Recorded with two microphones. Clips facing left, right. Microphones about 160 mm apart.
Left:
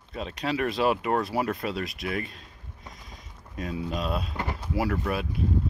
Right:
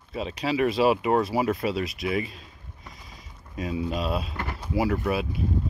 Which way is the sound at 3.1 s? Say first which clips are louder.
Even; centre (ahead or behind).